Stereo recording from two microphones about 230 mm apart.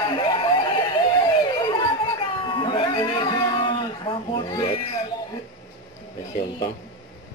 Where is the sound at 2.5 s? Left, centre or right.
Left.